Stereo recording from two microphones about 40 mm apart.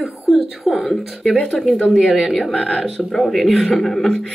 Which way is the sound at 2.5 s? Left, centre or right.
Left.